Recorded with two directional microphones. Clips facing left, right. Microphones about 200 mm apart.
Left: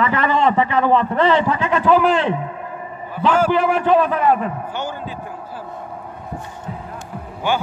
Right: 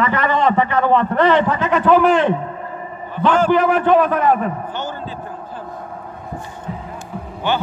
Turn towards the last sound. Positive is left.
turn(degrees=10)  # may be behind; listen again after turning